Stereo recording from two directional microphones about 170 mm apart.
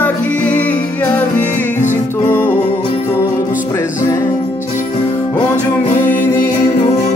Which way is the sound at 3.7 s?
15° left (ahead or behind).